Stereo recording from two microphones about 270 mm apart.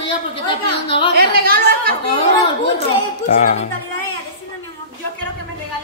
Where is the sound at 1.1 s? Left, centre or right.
Right.